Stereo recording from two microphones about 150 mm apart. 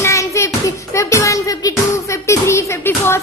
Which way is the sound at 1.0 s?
20° left (ahead or behind).